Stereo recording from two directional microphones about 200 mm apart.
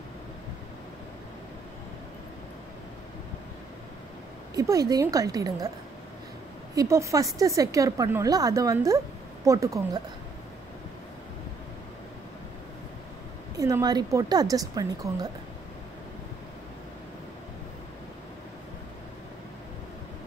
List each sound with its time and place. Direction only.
4.6 s a woman's voice: 15° right (ahead or behind)
6.7 s a woman's voice: 15° right (ahead or behind)
13.6 s a woman's voice: 15° right (ahead or behind)